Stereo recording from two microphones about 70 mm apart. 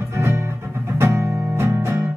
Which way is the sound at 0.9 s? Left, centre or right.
Right.